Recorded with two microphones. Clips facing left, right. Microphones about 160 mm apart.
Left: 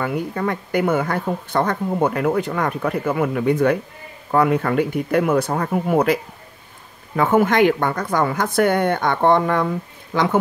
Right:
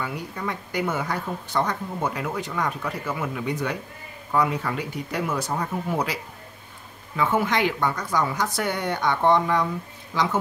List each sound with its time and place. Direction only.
0.0 s speech: 55° left (ahead or behind)
7.2 s speech: 50° left (ahead or behind)